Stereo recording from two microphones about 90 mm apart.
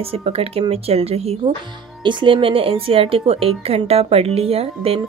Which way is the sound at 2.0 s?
60° right (ahead or behind).